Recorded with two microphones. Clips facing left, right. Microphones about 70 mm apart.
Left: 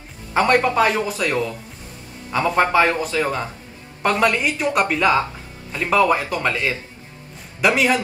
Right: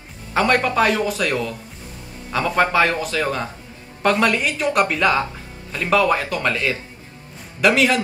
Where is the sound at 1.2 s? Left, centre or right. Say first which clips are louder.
Even; centre.